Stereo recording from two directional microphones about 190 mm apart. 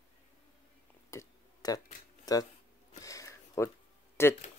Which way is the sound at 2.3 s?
20° left (ahead or behind).